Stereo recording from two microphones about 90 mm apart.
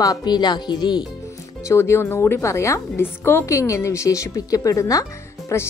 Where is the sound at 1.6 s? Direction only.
30° left (ahead or behind).